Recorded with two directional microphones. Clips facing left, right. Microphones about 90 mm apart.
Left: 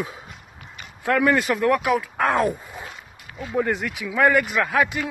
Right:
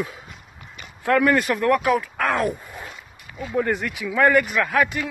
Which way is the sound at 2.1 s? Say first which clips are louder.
Left 2 dB; 35° left (ahead or behind).